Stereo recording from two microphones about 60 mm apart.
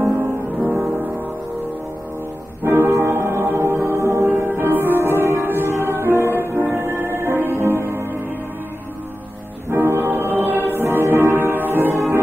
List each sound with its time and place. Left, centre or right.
2.6 s music: right
9.7 s music: right
10.3 s choir: right